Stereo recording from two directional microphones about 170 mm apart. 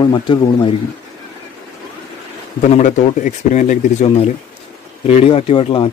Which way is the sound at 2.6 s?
45° left (ahead or behind).